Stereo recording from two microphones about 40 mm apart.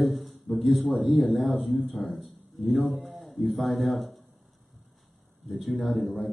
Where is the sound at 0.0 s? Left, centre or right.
Centre.